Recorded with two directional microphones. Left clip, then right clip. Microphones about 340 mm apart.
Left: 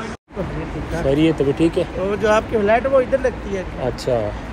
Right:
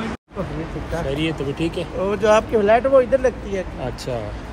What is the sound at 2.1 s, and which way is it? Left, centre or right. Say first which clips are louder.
Speech: right 2 dB; right.